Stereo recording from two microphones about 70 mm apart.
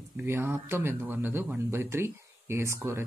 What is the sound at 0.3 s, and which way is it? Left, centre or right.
Speech, right.